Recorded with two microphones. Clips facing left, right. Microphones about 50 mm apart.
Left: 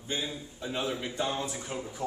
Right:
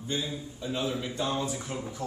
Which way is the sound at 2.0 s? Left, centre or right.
Left.